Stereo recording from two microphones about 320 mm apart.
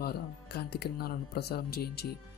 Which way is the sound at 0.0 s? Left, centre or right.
Left.